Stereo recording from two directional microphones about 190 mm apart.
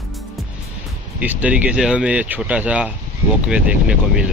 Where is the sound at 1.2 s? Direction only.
5° right (ahead or behind).